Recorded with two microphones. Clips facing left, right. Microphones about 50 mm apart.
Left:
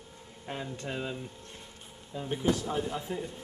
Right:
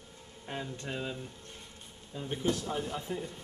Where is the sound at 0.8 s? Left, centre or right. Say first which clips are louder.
Left 2 dB; centre.